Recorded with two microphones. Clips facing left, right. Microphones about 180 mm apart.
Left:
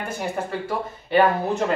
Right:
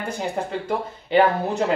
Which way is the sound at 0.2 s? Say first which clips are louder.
Even; 20° right (ahead or behind).